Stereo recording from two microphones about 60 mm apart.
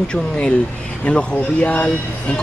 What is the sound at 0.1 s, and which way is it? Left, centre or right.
Speech, centre.